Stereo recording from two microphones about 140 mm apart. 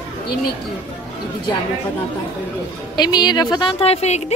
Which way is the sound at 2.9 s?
30° left (ahead or behind).